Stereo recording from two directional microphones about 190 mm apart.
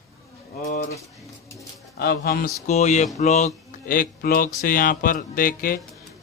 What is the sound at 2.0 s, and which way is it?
Speech, 55° left (ahead or behind).